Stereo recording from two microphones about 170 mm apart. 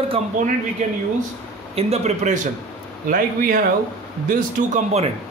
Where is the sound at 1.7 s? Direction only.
35° right (ahead or behind).